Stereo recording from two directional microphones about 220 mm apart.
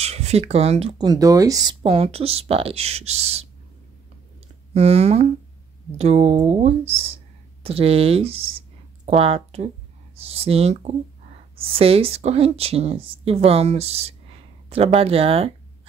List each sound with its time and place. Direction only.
0.0 s speech: 30° right (ahead or behind)
4.7 s speech: 30° right (ahead or behind)